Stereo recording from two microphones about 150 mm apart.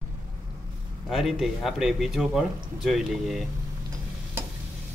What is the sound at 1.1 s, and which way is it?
Speech, centre (ahead or behind).